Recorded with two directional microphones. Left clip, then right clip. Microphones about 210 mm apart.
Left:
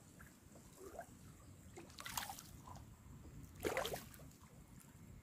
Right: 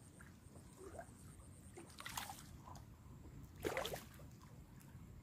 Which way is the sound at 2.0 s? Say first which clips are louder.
Left 2 dB; 10° left (ahead or behind).